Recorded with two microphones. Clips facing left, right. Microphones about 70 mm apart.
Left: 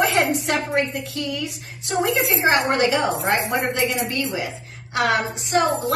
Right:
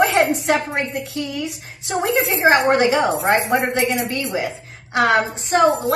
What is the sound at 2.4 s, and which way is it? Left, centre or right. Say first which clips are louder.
A woman's voice: right 5 dB; right.